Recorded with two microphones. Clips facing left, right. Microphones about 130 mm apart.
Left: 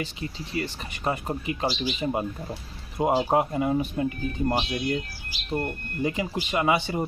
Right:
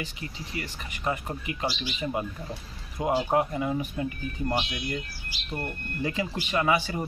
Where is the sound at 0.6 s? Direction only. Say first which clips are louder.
Left 7 dB; 30° left (ahead or behind).